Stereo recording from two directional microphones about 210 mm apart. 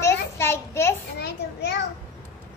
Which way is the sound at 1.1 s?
50° left (ahead or behind).